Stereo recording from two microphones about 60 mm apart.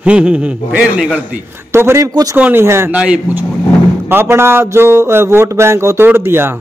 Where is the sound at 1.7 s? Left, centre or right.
Right.